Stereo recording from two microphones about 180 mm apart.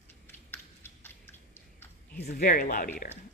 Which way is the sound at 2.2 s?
60° left (ahead or behind).